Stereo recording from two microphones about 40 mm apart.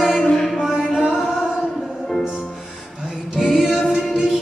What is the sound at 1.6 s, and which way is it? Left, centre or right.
Music, centre.